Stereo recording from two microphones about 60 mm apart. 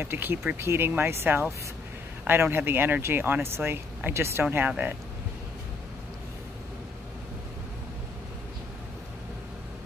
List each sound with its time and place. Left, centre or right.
0.0 s speech: right
4.5 s speech: right